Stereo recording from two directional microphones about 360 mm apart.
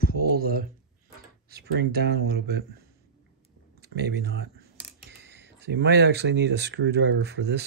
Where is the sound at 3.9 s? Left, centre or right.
Right.